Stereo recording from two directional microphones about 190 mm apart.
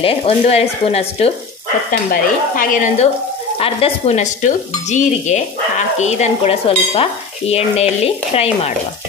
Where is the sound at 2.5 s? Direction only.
45° left (ahead or behind).